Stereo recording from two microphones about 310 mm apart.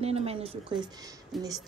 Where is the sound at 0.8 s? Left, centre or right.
Centre.